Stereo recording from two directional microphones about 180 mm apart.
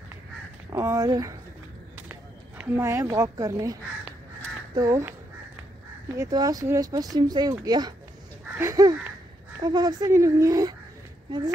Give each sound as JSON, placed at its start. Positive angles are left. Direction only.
{"t": 0.7, "sound": "speech", "side_deg": -15}
{"t": 2.0, "sound": "speech", "side_deg": -10}
{"t": 4.7, "sound": "speech", "side_deg": -15}
{"t": 6.1, "sound": "speech", "side_deg": -20}